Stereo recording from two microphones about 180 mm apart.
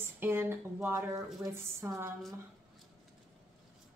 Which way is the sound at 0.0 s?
10° right (ahead or behind).